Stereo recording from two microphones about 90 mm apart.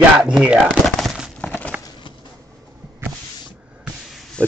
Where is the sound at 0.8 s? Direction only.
Centre (ahead or behind).